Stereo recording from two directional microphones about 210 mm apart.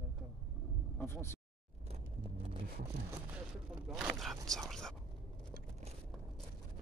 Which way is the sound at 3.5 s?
Centre (ahead or behind).